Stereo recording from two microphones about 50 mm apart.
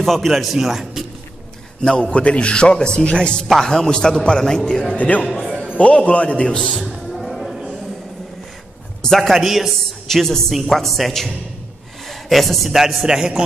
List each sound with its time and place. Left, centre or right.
0.0 s a man's voice: centre
1.8 s a man's voice: centre
3.4 s a man's voice: centre
4.9 s a man's voice: left
5.3 s music: centre
5.8 s a man's voice: left
6.8 s music: centre
9.1 s a man's voice: centre
9.4 s a man's voice: centre
10.0 s a man's voice: centre